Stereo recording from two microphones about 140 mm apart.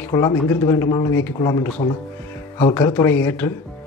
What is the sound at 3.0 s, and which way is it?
Speech, 15° left (ahead or behind).